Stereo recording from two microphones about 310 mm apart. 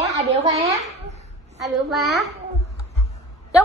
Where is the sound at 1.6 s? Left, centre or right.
Centre.